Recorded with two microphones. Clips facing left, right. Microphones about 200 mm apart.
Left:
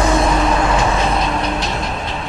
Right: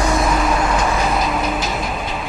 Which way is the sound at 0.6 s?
25° left (ahead or behind).